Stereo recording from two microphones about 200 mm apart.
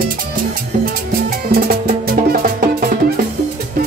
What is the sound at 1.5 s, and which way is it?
Music, 45° right (ahead or behind).